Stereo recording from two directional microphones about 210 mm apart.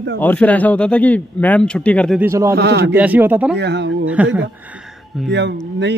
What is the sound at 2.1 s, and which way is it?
Speech, 15° right (ahead or behind).